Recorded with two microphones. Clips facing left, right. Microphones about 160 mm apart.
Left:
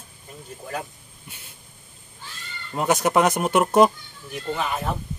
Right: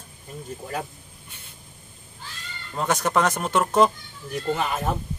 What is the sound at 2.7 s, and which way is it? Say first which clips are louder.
Speech: left 3 dB; 15° left (ahead or behind).